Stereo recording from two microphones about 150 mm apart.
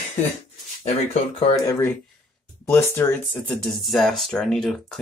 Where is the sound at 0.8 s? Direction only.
45° left (ahead or behind).